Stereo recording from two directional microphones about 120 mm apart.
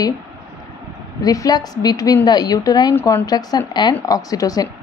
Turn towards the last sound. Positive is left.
turn(degrees=30)  # may be behind; listen again after turning